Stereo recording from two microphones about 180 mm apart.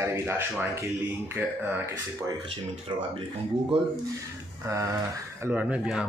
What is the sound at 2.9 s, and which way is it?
Speech, 25° right (ahead or behind).